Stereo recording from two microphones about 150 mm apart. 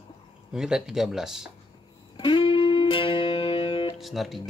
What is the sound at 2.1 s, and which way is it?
Music, 35° left (ahead or behind).